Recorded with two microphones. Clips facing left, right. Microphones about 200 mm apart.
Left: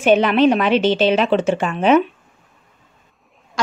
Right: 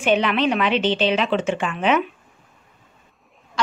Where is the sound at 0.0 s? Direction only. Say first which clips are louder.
Left 6 dB; 40° left (ahead or behind).